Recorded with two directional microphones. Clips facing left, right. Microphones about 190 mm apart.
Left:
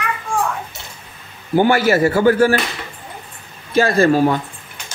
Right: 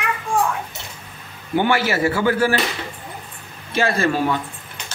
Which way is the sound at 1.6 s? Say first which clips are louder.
Left 5 dB; 40° left (ahead or behind).